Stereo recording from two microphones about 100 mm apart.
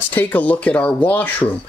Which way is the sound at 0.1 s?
20° left (ahead or behind).